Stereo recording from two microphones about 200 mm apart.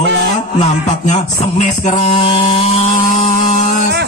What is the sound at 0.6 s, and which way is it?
Mantra, 35° left (ahead or behind).